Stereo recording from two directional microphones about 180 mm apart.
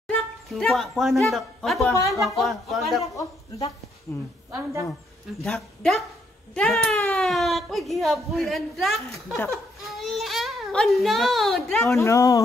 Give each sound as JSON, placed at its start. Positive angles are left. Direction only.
{"t": 0.1, "sound": "speech", "side_deg": 5}
{"t": 1.9, "sound": "speech", "side_deg": 20}
{"t": 2.1, "sound": "speech", "side_deg": 0}
{"t": 4.5, "sound": "a woman's voice", "side_deg": -15}
{"t": 5.4, "sound": "a child's voice", "side_deg": 5}
{"t": 12.0, "sound": "speech", "side_deg": 15}